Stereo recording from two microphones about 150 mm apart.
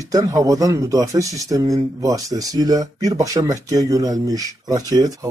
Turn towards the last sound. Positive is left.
turn(degrees=-25)  # may be behind; listen again after turning